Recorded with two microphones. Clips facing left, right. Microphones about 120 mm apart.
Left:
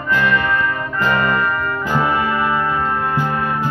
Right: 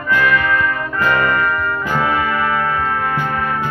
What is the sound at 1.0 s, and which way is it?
Music, 15° left (ahead or behind).